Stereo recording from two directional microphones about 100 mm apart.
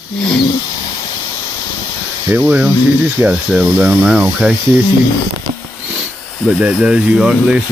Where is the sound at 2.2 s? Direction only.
10° right (ahead or behind).